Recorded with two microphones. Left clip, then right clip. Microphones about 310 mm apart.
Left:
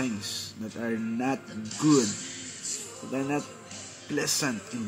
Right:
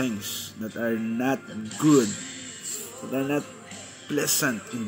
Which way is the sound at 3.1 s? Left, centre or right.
Centre.